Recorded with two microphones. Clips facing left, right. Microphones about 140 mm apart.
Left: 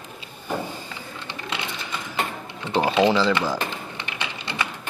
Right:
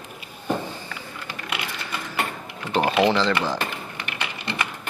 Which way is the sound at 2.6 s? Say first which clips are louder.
Even; 20° left (ahead or behind).